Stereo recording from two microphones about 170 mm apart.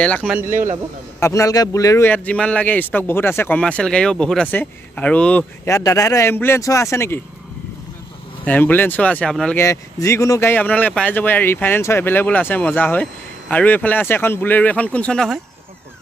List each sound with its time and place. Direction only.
0.0 s a man's voice: 5° left (ahead or behind)
0.5 s speech: 50° right (ahead or behind)
1.2 s a man's voice: 20° left (ahead or behind)
8.5 s a man's voice: 10° left (ahead or behind)
9.6 s a man's voice: 15° left (ahead or behind); by 15.4 s centre (ahead or behind)